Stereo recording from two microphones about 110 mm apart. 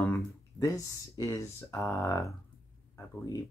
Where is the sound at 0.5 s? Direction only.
30° left (ahead or behind).